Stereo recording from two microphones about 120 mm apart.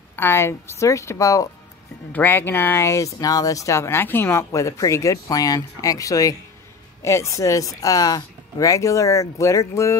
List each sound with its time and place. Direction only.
0.1 s speech: 20° left (ahead or behind)
2.1 s speech: 15° left (ahead or behind)